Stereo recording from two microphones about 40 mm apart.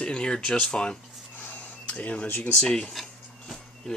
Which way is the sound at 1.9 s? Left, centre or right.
Left.